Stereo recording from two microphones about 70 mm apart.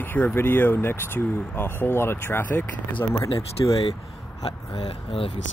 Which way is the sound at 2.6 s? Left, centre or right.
Left.